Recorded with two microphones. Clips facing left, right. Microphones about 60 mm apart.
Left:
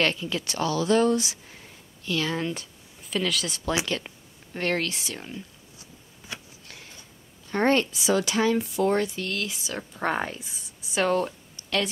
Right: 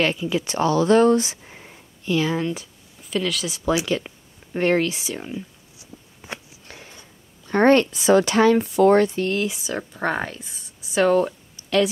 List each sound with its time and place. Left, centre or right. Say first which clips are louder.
0.0 s speech: right 4 dB; centre
0.5 s speech: right 6 dB; right
2.3 s speech: right 4 dB; centre
6.2 s a sound: right 4 dB; right
7.5 s speech: right 7 dB; right
9.1 s speech: right 8 dB; right
10.0 s speech: right 2 dB; centre
10.4 s a sound: right 1 dB; centre